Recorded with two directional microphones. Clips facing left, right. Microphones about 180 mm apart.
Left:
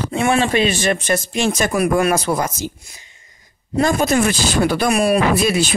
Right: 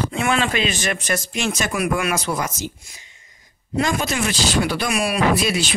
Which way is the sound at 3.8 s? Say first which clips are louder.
Left 6 dB; 50° left (ahead or behind).